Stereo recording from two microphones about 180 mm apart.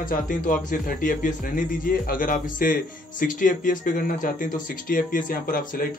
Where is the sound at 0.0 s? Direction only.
50° left (ahead or behind).